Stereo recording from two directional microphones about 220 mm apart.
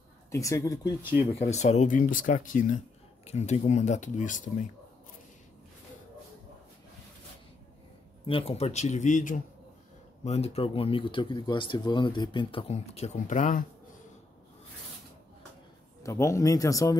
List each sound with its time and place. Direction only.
0.3 s speech: 15° left (ahead or behind)
1.4 s speech: 30° left (ahead or behind)
8.3 s speech: 25° left (ahead or behind)
16.0 s speech: 15° left (ahead or behind)